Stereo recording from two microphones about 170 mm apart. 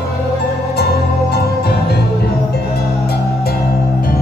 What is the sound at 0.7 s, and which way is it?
Music, 70° left (ahead or behind).